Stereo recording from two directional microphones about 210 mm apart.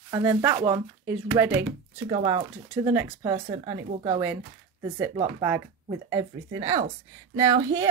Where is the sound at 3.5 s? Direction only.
25° right (ahead or behind).